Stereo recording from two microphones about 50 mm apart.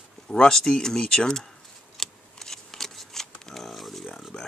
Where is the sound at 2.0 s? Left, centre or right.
Centre.